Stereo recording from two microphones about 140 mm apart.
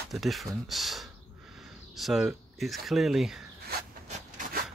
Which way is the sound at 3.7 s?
80° right.